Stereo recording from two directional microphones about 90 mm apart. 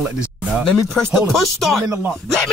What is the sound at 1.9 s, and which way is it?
Speech, 25° right (ahead or behind).